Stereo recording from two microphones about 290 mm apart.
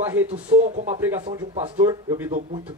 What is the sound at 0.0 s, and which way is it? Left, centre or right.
Speech, centre.